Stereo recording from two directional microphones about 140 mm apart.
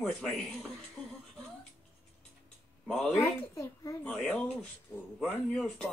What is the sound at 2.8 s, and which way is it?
Speech, 5° left (ahead or behind).